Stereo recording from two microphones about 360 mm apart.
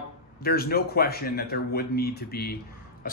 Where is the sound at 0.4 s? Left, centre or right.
Left.